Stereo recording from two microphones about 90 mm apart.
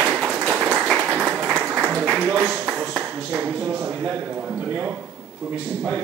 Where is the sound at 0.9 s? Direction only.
15° right (ahead or behind).